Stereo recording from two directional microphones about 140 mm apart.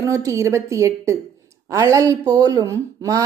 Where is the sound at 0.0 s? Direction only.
20° right (ahead or behind).